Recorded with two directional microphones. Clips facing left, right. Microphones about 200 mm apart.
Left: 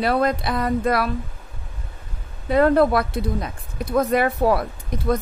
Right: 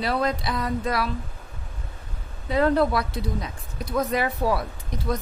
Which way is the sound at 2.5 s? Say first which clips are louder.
Left 5 dB; 55° left (ahead or behind).